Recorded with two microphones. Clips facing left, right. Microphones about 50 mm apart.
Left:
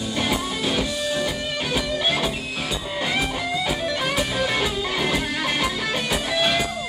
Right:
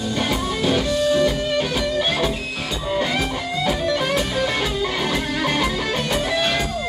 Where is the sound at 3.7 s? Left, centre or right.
Centre.